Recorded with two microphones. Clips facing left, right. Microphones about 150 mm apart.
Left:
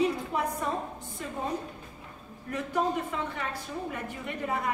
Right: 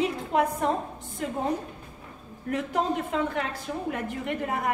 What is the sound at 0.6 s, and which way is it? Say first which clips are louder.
Speech: right 6 dB; 70° right (ahead or behind).